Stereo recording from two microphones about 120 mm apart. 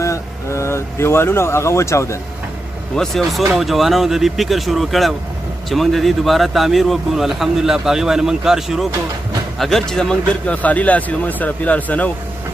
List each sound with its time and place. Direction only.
0.0 s speech: 25° left (ahead or behind)
3.0 s speech: centre (ahead or behind)